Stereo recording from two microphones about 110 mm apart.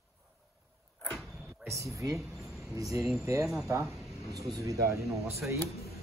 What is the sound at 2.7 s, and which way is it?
A man's voice, 30° right (ahead or behind).